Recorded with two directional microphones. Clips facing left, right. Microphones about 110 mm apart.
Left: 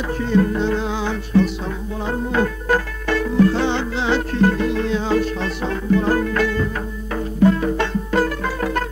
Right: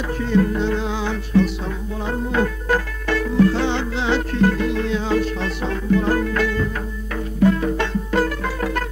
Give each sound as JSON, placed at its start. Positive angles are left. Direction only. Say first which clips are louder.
{"t": 0.3, "sound": "music", "louder": "left 1 dB", "side_deg": 30}